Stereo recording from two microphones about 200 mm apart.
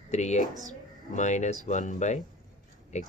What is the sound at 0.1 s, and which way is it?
A man's voice, 35° left (ahead or behind).